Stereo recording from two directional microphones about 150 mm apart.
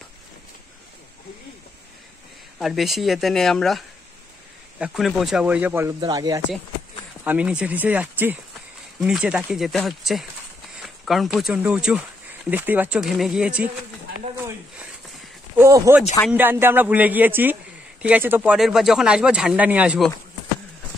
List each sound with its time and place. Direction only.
2.6 s speech: centre (ahead or behind)
5.9 s speech: 25° right (ahead or behind)
7.2 s speech: 10° right (ahead or behind)
15.5 s speech: 20° right (ahead or behind)